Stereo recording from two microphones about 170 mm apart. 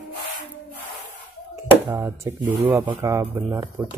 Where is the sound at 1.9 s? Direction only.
20° right (ahead or behind).